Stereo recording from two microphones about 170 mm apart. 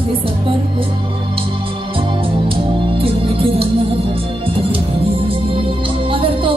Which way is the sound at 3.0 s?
35° right (ahead or behind).